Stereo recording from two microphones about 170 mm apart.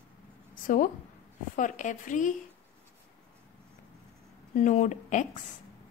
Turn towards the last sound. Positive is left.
turn(degrees=45)  # may be behind; listen again after turning